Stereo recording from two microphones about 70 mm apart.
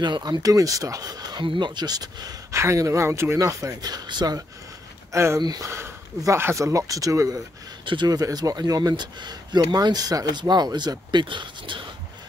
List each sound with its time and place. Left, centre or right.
0.0 s speech: right
2.5 s speech: right
3.3 s speech: right
5.1 s speech: right